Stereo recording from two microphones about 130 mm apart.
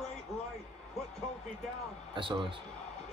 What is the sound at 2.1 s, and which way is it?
Speech, 40° right (ahead or behind).